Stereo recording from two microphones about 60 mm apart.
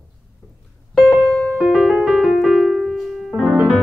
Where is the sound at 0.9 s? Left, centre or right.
Centre.